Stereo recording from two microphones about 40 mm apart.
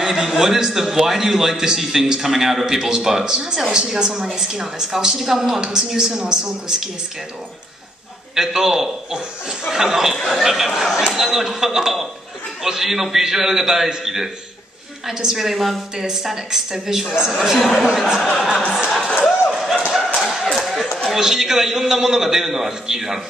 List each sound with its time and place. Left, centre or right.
0.0 s a man's voice: centre
8.4 s a man's voice: centre
18.9 s a sound: centre
19.1 s a sound: centre
20.5 s chatter: centre
21.2 s a man's voice: centre